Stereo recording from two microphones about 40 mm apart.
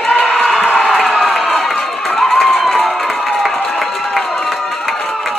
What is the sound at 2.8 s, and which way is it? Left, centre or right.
Crowd, centre.